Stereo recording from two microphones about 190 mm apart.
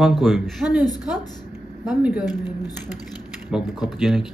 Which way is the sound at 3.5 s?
Centre (ahead or behind).